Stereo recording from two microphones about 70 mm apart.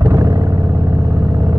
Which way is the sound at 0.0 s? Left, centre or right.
Right.